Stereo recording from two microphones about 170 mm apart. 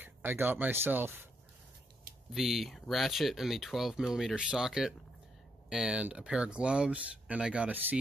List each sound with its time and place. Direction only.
0.0 s speech: 10° right (ahead or behind)
2.3 s speech: centre (ahead or behind)